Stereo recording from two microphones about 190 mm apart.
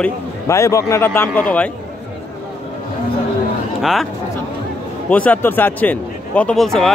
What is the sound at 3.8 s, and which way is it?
Speech, centre (ahead or behind).